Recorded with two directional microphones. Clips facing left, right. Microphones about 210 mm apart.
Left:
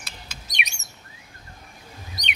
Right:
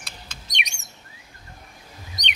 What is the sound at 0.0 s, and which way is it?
Chirp, 5° left (ahead or behind).